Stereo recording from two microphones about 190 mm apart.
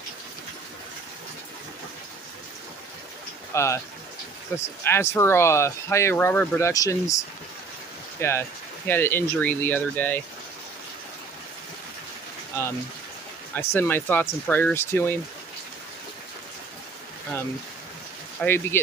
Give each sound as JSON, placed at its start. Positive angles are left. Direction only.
{"t": 3.5, "sound": "speech", "side_deg": 15}
{"t": 8.2, "sound": "speech", "side_deg": 15}
{"t": 12.6, "sound": "speech", "side_deg": 10}
{"t": 18.4, "sound": "speech", "side_deg": 10}